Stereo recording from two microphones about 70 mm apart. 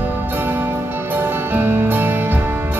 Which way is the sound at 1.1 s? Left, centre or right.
Right.